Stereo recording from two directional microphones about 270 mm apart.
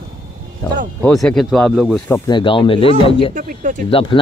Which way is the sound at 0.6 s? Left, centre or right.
Centre.